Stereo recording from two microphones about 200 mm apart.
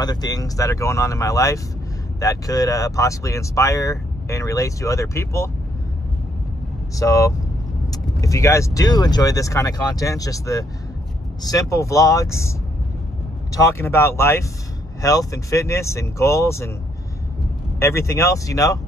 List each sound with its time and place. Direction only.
0.0 s speech: 20° left (ahead or behind)
7.0 s speech: 15° left (ahead or behind)
11.7 s speech: 15° left (ahead or behind)
17.7 s speech: 15° left (ahead or behind)